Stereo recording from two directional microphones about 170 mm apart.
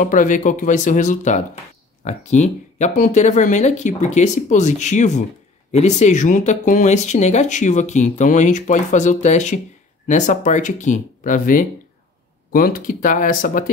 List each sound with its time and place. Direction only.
0.0 s speech: 50° left (ahead or behind)